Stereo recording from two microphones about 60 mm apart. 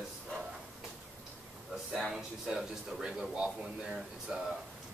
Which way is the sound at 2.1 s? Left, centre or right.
Centre.